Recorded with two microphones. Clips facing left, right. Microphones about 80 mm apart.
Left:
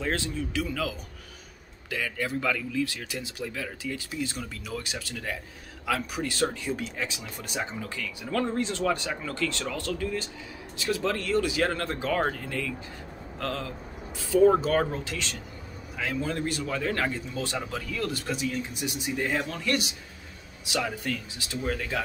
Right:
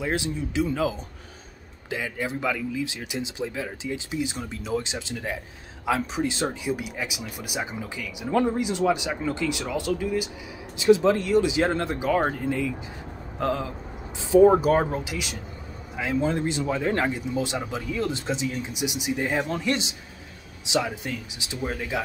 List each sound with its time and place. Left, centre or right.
0.0 s speech: centre